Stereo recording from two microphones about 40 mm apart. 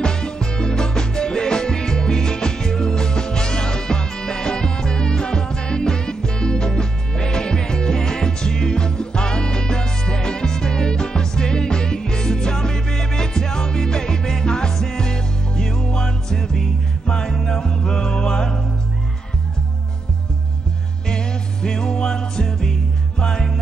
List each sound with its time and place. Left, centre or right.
0.0 s music: centre
21.1 s music: centre